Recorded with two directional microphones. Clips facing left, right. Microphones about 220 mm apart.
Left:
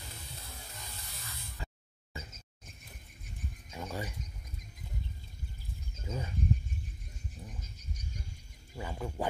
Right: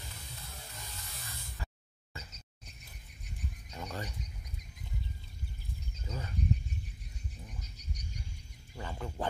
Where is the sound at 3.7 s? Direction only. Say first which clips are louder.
Left 2 dB; 5° left (ahead or behind).